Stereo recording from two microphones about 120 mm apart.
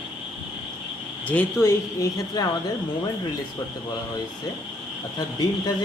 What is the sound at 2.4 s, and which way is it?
Speech, 35° left (ahead or behind).